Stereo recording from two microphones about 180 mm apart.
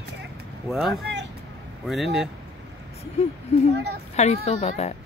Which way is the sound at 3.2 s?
35° left (ahead or behind).